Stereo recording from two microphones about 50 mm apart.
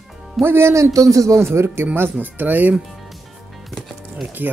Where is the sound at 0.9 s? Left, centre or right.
Right.